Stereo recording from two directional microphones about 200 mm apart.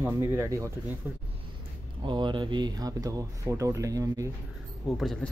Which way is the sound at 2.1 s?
25° right (ahead or behind).